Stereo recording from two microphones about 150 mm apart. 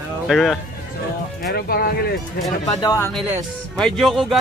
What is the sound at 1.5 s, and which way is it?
Speech, 90° left.